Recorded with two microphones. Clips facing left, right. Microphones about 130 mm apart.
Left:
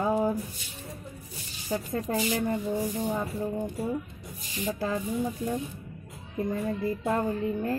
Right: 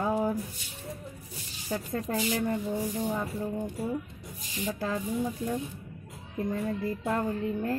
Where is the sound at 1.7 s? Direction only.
10° left (ahead or behind).